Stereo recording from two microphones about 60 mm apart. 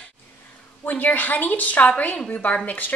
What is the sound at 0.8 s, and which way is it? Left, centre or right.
A woman's voice, left.